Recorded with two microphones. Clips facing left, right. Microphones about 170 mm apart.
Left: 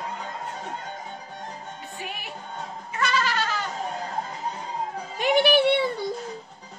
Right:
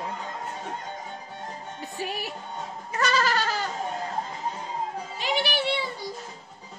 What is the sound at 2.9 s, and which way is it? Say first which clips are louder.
Goat: right 1 dB; 40° right (ahead or behind).